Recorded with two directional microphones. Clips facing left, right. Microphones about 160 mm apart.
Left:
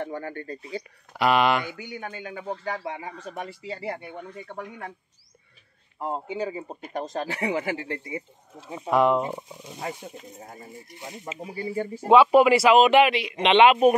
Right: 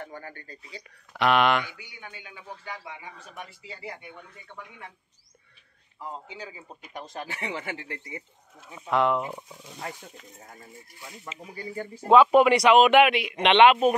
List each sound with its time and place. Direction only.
0.0 s speech: 45° left (ahead or behind)
1.1 s speech: 5° left (ahead or behind)
1.8 s speech: 50° left (ahead or behind)
3.3 s speech: 35° left (ahead or behind)
4.5 s speech: 45° left (ahead or behind)
5.9 s speech: 55° left (ahead or behind); by 10.4 s 20° left (ahead or behind)
10.4 s speech: 30° left (ahead or behind)
12.1 s speech: 5° left (ahead or behind)